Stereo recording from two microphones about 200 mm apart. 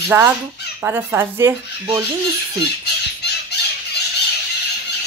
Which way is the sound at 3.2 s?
55° left (ahead or behind).